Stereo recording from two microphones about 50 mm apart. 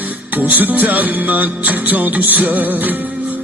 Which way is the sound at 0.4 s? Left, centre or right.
Right.